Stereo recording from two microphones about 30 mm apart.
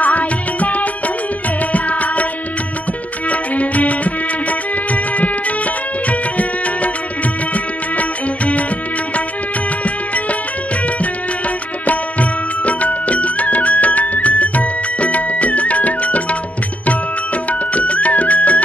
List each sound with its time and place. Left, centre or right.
0.0 s music: left
3.3 s music: left
11.8 s music: left
17.5 s music: left